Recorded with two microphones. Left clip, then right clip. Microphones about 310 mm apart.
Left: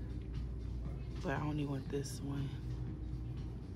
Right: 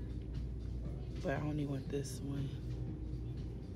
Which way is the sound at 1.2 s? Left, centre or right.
Centre.